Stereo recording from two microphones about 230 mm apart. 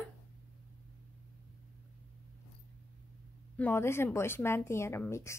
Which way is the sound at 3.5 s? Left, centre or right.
Centre.